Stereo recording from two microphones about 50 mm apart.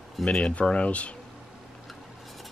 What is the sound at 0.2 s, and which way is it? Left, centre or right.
Speech, centre.